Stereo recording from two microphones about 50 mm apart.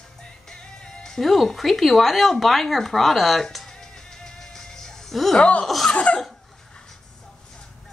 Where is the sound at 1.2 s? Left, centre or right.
Centre.